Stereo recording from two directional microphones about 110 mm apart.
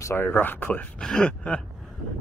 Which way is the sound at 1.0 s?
5° left (ahead or behind).